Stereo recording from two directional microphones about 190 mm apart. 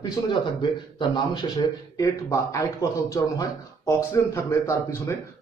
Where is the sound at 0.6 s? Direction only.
25° left (ahead or behind).